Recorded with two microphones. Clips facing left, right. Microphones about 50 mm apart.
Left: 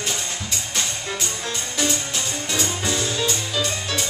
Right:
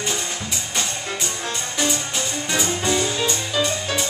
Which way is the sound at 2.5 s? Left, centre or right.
Centre.